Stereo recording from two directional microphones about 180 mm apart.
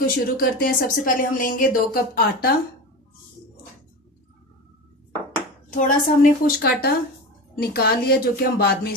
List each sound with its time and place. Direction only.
0.0 s speech: 50° left (ahead or behind)
5.7 s speech: 45° left (ahead or behind)